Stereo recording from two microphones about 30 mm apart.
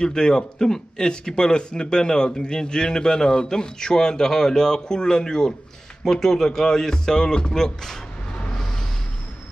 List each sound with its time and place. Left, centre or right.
0.0 s a man's voice: left